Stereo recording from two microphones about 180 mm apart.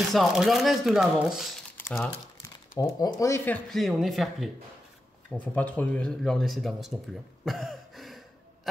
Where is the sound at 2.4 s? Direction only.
20° left (ahead or behind).